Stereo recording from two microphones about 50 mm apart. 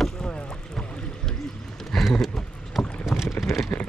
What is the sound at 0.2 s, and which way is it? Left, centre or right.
Boat, centre.